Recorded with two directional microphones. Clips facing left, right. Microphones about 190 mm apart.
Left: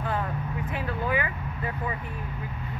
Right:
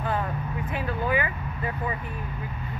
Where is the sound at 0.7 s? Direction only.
15° right (ahead or behind).